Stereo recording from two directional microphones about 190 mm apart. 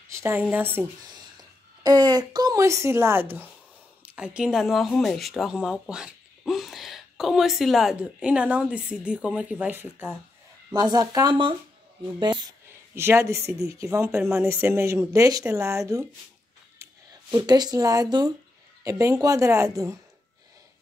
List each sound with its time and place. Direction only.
0.1 s a woman's voice: 10° right (ahead or behind)
10.7 s a woman's voice: 20° right (ahead or behind)
16.7 s a sound: 15° right (ahead or behind)
17.4 s a woman's voice: 20° right (ahead or behind)